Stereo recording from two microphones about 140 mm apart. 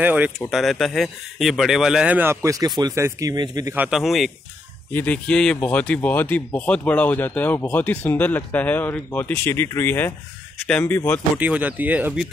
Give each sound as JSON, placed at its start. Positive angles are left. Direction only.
{"t": 0.0, "sound": "speech", "side_deg": -10}
{"t": 0.5, "sound": "speech", "side_deg": 0}
{"t": 3.7, "sound": "speech", "side_deg": -10}
{"t": 4.0, "sound": "speech", "side_deg": 0}
{"t": 4.9, "sound": "speech", "side_deg": 10}
{"t": 11.3, "sound": "speech", "side_deg": -10}